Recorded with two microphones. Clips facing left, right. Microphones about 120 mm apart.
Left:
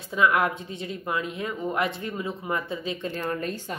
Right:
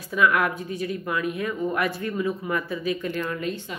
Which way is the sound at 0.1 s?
25° left (ahead or behind).